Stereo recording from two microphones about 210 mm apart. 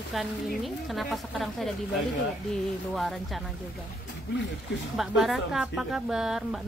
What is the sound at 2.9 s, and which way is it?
Speech, centre (ahead or behind).